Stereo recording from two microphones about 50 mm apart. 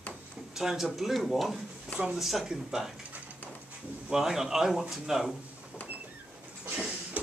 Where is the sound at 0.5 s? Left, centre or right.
Centre.